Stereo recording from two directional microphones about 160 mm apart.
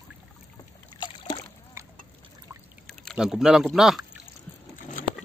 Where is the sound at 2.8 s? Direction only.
Centre (ahead or behind).